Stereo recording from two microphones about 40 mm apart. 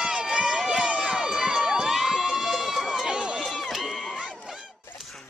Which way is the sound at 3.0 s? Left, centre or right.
Centre.